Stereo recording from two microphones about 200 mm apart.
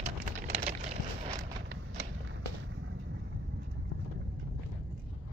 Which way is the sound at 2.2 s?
75° right (ahead or behind).